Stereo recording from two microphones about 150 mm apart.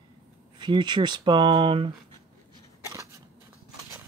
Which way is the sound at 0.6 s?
30° right (ahead or behind).